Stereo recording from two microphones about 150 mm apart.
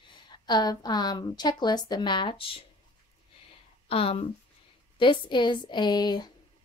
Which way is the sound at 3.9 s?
40° left (ahead or behind).